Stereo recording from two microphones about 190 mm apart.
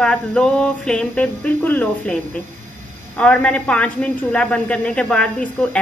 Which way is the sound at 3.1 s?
10° left (ahead or behind).